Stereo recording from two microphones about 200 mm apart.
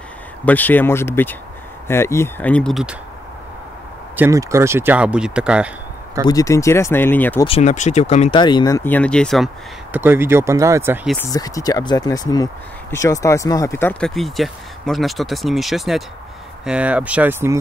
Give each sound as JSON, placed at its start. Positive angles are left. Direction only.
{"t": 0.5, "sound": "speech", "side_deg": 10}
{"t": 4.2, "sound": "speech", "side_deg": -15}
{"t": 6.2, "sound": "speech", "side_deg": 15}
{"t": 7.4, "sound": "speech", "side_deg": 30}
{"t": 8.4, "sound": "speech", "side_deg": 20}
{"t": 9.9, "sound": "speech", "side_deg": -10}
{"t": 11.3, "sound": "speech", "side_deg": 20}